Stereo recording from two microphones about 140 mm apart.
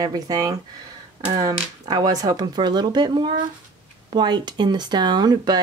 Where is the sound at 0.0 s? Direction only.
25° right (ahead or behind).